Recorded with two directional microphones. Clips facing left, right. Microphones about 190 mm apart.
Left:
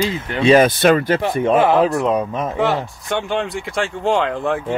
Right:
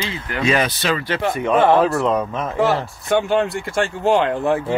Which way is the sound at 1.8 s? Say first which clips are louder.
Left 1 dB; 15° left (ahead or behind).